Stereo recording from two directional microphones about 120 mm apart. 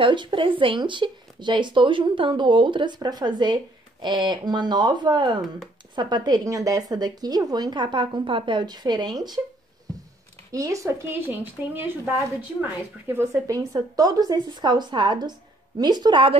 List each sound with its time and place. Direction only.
0.0 s speech: 40° right (ahead or behind)
10.5 s speech: 30° right (ahead or behind)
13.1 s speech: 25° right (ahead or behind); by 16.3 s 45° right (ahead or behind)